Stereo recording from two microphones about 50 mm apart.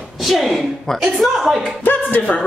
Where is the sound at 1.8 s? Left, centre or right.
Left.